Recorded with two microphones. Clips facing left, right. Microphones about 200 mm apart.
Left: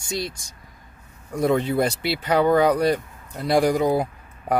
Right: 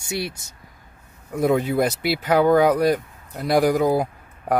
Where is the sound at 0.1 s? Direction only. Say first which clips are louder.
Right 1 dB; 10° right (ahead or behind).